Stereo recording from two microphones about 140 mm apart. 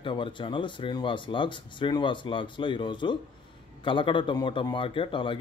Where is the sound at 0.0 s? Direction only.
35° left (ahead or behind).